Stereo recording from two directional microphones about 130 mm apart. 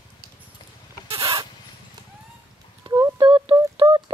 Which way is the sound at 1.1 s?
30° right (ahead or behind).